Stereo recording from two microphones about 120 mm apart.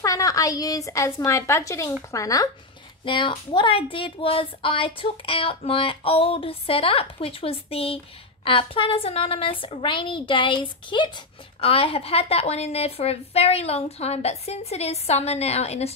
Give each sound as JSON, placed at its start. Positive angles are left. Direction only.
{"t": 0.0, "sound": "a woman's voice", "side_deg": 30}
{"t": 3.1, "sound": "a woman's voice", "side_deg": 45}